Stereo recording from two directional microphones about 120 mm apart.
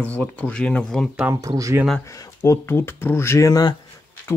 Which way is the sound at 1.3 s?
25° right (ahead or behind).